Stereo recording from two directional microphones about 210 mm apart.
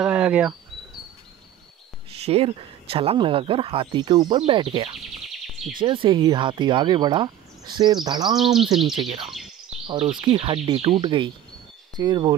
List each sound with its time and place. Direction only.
0.0 s speech: 5° right (ahead or behind)
2.0 s speech: 30° right (ahead or behind)